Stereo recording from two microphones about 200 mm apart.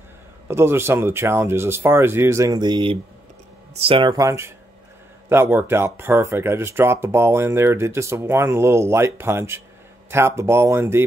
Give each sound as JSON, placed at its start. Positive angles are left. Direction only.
{"t": 0.5, "sound": "speech", "side_deg": -10}